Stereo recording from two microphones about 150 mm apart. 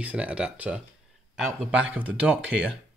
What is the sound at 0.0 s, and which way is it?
Speech, 10° right (ahead or behind).